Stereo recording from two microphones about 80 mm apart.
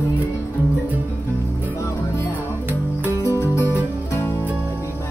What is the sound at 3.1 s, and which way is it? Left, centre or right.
Music, left.